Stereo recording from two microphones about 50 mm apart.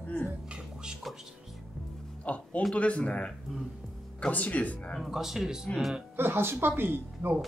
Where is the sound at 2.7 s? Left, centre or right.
Left.